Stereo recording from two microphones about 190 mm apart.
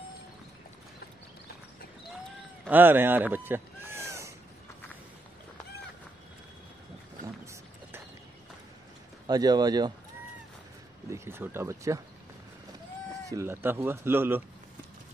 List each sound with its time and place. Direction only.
2.7 s speech: 10° right (ahead or behind)
9.3 s speech: 20° right (ahead or behind)
11.1 s speech: 15° right (ahead or behind)
13.3 s speech: 15° right (ahead or behind)